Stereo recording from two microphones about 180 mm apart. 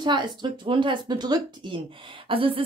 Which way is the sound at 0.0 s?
25° right (ahead or behind).